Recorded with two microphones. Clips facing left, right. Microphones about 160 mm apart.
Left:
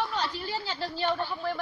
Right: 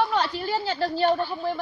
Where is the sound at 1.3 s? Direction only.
20° right (ahead or behind).